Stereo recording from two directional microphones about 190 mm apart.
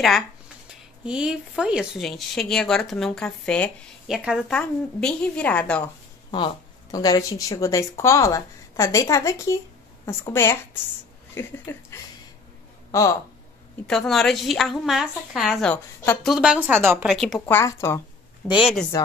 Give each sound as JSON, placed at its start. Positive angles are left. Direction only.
{"t": 0.7, "sound": "a woman's voice", "side_deg": -5}
{"t": 6.3, "sound": "speech", "side_deg": 20}
{"t": 13.8, "sound": "a woman's voice", "side_deg": 0}
{"t": 17.5, "sound": "speech", "side_deg": 15}
{"t": 18.5, "sound": "a woman's voice", "side_deg": -5}